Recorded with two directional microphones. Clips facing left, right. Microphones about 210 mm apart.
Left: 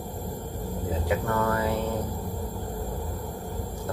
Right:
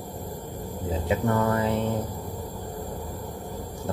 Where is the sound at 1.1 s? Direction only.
25° right (ahead or behind).